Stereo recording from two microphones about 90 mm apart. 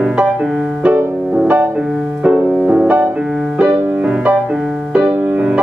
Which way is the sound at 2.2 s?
10° right (ahead or behind).